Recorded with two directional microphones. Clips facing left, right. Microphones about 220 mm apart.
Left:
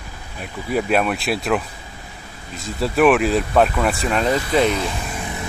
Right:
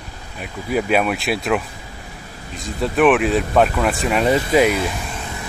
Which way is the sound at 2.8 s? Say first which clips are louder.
Even; centre (ahead or behind).